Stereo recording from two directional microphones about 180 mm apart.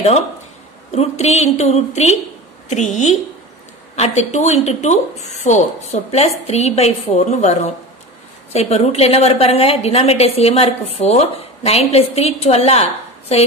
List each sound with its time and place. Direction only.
0.9 s a woman's voice: 35° left (ahead or behind)